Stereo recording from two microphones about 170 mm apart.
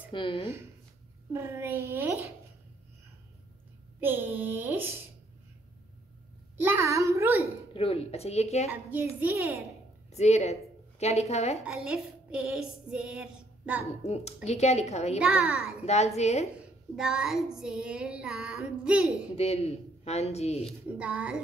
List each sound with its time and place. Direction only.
0.1 s speech: 30° left (ahead or behind)
1.3 s a child's voice: 15° right (ahead or behind)
4.0 s a child's voice: 10° right (ahead or behind)
6.6 s a child's voice: 15° right (ahead or behind)
7.7 s speech: 35° left (ahead or behind)
8.6 s a child's voice: 10° right (ahead or behind)
10.1 s a woman's voice: 40° left (ahead or behind)
11.6 s a sound: 5° right (ahead or behind)
14.0 s speech: 40° left (ahead or behind)
15.1 s a sound: 5° right (ahead or behind)
15.8 s speech: 40° left (ahead or behind)
16.9 s a sound: 5° right (ahead or behind)
19.3 s speech: 35° left (ahead or behind)
20.6 s a child's voice: 5° right (ahead or behind)